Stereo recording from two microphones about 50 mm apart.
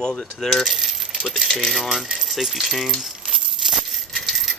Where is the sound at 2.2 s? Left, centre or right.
Centre.